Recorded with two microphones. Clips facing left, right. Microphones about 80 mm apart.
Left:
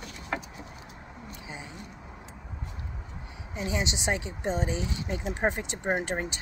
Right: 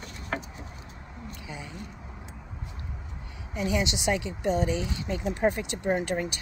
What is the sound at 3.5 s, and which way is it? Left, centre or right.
Speech, left.